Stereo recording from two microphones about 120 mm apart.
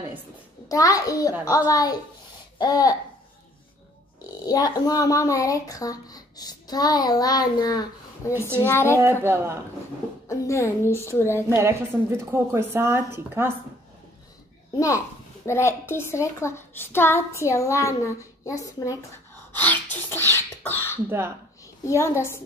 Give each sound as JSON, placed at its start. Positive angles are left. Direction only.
{"t": 0.7, "sound": "a woman's voice", "side_deg": 30}
{"t": 4.5, "sound": "a woman's voice", "side_deg": 30}
{"t": 9.2, "sound": "a woman's voice", "side_deg": -20}
{"t": 10.2, "sound": "a sound", "side_deg": 25}
{"t": 11.5, "sound": "a woman's voice", "side_deg": -20}
{"t": 15.4, "sound": "a woman's voice", "side_deg": 20}
{"t": 19.5, "sound": "gasp", "side_deg": 15}
{"t": 20.2, "sound": "beatboxing", "side_deg": -25}
{"t": 20.6, "sound": "beatboxing", "side_deg": 20}
{"t": 21.8, "sound": "a woman's voice", "side_deg": 25}